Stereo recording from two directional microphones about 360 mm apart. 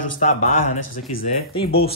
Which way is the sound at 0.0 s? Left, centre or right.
Left.